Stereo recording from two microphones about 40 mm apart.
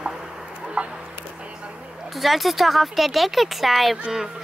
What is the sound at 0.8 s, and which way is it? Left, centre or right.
Chicken, right.